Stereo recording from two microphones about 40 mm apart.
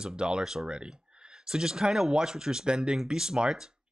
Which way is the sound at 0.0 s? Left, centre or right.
Right.